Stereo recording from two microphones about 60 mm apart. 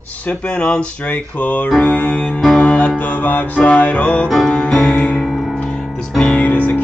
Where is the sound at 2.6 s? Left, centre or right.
Centre.